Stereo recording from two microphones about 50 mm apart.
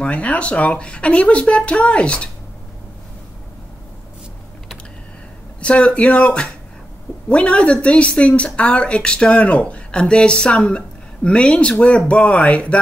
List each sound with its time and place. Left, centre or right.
0.0 s speech: left
5.6 s speech: left